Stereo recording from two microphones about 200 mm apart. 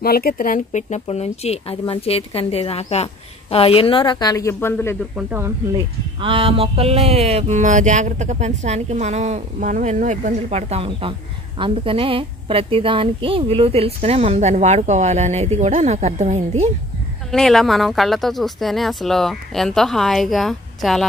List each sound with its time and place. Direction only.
0.0 s speech: 50° left (ahead or behind); by 4.9 s 10° left (ahead or behind)
5.1 s speech: 10° right (ahead or behind)
6.2 s a sound: 25° right (ahead or behind)
17.3 s speech: centre (ahead or behind)